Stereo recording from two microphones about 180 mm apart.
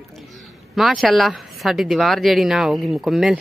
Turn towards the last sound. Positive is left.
turn(degrees=0)  # may be behind; listen again after turning